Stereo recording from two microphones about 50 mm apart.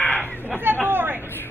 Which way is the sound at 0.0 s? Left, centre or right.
Left.